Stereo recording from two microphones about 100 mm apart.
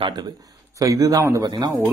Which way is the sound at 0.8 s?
35° right (ahead or behind).